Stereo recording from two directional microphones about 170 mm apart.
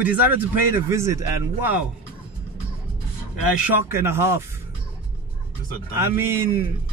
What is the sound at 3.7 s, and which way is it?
Speech, 15° right (ahead or behind).